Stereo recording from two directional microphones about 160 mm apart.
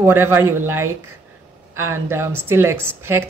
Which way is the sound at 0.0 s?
15° right (ahead or behind).